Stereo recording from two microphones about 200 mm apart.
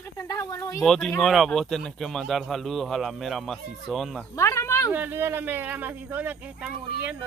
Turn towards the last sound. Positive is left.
turn(degrees=-10)  # may be behind; listen again after turning